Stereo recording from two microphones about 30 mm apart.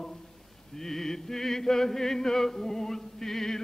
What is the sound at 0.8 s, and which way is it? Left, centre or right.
Music, centre.